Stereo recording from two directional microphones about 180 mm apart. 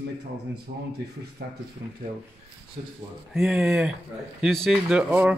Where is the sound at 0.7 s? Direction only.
70° right (ahead or behind).